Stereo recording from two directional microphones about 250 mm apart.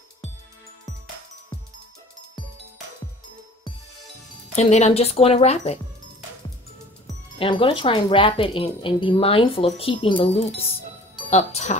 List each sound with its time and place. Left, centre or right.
4.6 s speech: left
7.3 s speech: left